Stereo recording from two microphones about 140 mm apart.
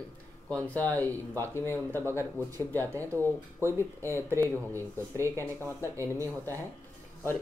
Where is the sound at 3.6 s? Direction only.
20° right (ahead or behind).